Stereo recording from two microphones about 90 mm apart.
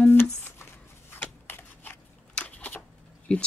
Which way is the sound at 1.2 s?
25° left (ahead or behind).